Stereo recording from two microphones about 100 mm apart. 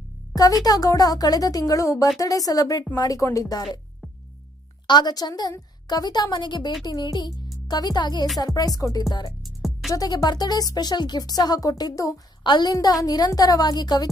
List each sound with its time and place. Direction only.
0.3 s music: 40° left (ahead or behind)
0.7 s speech: 35° left (ahead or behind)
4.8 s speech: 45° left (ahead or behind)
9.4 s music: centre (ahead or behind)
9.9 s speech: 40° left (ahead or behind)
12.4 s speech: 45° left (ahead or behind)